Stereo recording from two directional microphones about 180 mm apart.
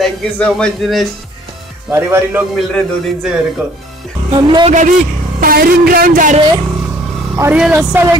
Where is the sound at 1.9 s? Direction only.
15° right (ahead or behind).